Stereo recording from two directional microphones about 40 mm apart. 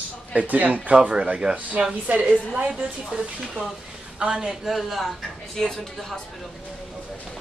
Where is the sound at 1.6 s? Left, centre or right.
Right.